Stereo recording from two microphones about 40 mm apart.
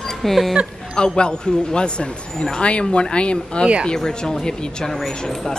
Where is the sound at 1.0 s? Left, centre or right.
Left.